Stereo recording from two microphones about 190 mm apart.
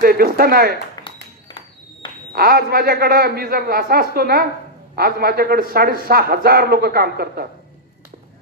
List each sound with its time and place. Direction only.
0.0 s speech: 55° right (ahead or behind)
1.0 s a sound: 25° left (ahead or behind)
2.3 s a man's voice: 55° right (ahead or behind)